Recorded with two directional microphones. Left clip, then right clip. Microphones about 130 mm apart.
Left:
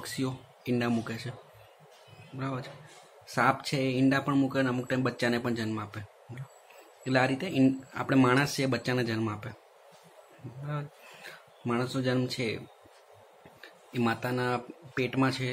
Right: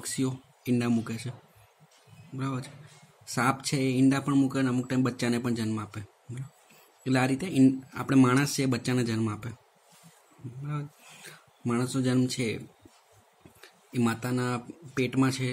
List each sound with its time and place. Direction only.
0.0 s speech: 35° right (ahead or behind)
2.3 s speech: 40° right (ahead or behind)
10.7 s speech: 35° right (ahead or behind)